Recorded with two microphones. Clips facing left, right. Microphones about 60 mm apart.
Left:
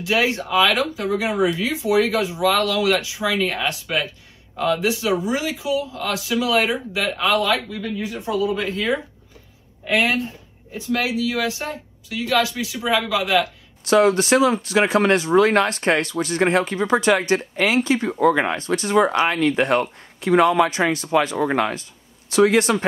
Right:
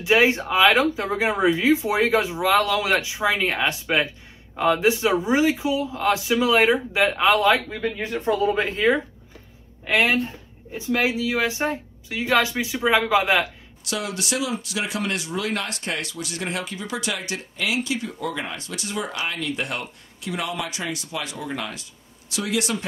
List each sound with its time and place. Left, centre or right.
0.0 s speech: right
13.8 s speech: left